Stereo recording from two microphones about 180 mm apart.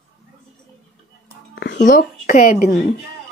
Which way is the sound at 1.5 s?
65° left (ahead or behind).